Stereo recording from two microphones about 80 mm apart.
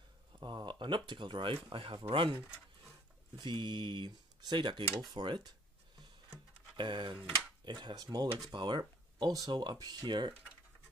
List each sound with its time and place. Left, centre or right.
0.4 s speech: right
6.8 s speech: right
7.9 s speech: right
8.5 s speech: right